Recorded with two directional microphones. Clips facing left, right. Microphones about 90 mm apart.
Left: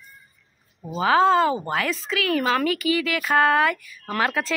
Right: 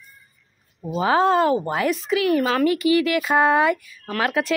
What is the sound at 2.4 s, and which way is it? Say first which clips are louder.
Speech: right 2 dB; 5° right (ahead or behind).